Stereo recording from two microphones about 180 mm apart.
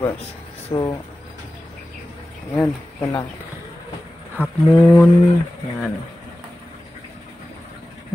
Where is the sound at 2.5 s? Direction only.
15° left (ahead or behind).